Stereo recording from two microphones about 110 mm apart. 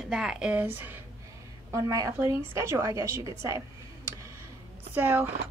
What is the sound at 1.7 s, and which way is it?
A woman's voice, 30° right (ahead or behind).